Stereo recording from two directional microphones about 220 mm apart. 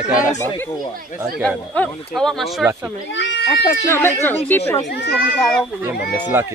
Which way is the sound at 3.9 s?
10° left (ahead or behind).